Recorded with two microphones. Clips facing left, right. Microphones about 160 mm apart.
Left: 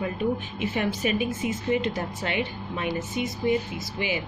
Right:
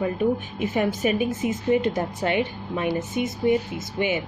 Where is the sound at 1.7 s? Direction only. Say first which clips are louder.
Right 5 dB; 45° right (ahead or behind).